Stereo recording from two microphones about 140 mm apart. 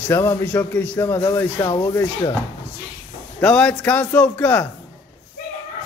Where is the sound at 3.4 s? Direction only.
5° left (ahead or behind).